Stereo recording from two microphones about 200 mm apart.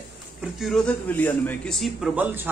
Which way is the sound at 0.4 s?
Centre (ahead or behind).